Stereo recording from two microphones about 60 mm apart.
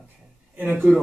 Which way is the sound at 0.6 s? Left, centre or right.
Right.